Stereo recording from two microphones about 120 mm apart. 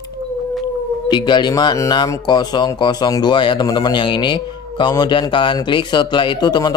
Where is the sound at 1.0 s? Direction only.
40° left (ahead or behind).